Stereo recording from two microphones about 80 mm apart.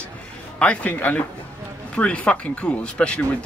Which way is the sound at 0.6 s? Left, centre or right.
Centre.